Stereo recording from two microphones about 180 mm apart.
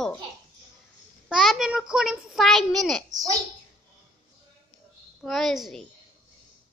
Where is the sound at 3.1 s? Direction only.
20° right (ahead or behind).